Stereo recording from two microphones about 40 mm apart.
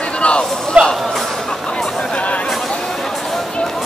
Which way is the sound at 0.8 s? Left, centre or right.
Right.